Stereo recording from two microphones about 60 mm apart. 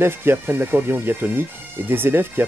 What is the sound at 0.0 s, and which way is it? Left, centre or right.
Speech, right.